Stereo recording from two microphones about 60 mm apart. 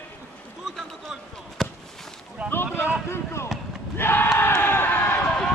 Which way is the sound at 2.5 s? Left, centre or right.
Left.